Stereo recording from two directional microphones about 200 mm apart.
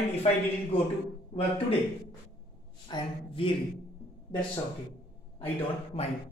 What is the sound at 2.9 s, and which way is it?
Speech, 25° left (ahead or behind).